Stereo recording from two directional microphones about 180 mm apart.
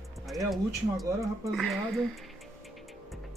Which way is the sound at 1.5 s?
Centre (ahead or behind).